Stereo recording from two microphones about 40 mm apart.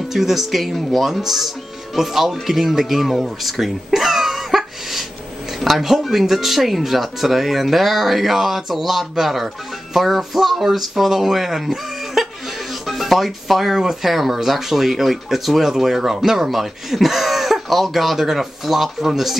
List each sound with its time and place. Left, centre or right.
0.1 s speech: centre